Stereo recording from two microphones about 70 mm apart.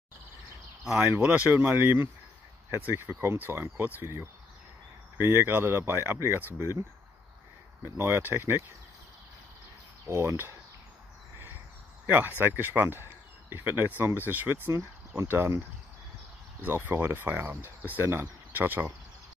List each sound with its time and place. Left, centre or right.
1.2 s speech: right
1.7 s speech: right
7.8 s speech: right
10.0 s speech: right
12.1 s speech: right
16.6 s speech: right